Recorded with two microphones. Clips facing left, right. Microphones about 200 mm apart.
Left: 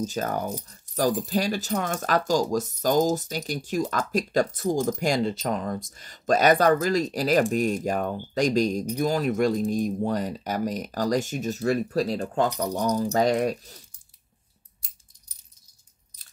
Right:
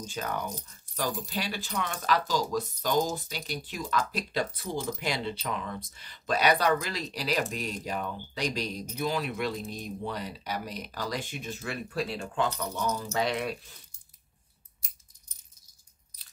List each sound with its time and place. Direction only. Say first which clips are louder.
0.0 s speech: left 7 dB; 40° left (ahead or behind)